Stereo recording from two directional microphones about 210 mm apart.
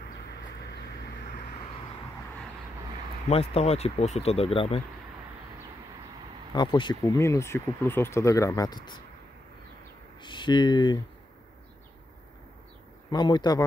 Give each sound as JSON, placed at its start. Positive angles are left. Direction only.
{"t": 3.3, "sound": "speech", "side_deg": 30}
{"t": 6.5, "sound": "speech", "side_deg": 20}
{"t": 10.2, "sound": "speech", "side_deg": 20}
{"t": 13.1, "sound": "speech", "side_deg": 20}